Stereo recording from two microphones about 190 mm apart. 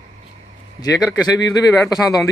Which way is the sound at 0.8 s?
20° left (ahead or behind).